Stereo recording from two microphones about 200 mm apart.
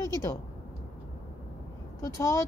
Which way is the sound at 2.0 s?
15° left (ahead or behind).